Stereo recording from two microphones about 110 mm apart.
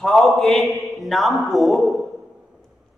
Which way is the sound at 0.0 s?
Centre (ahead or behind).